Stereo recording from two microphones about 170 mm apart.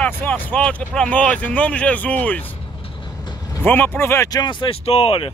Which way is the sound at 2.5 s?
30° left (ahead or behind).